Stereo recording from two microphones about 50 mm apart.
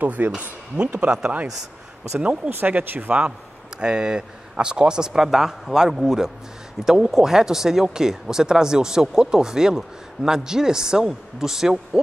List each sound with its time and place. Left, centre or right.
0.0 s speech: right
0.9 s speech: centre
2.6 s speech: right
3.1 s speech: right